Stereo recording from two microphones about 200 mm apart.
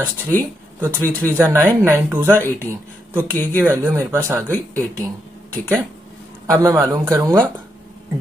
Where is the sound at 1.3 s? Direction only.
15° right (ahead or behind).